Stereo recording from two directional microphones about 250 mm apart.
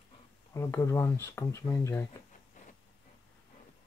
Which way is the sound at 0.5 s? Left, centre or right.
Centre.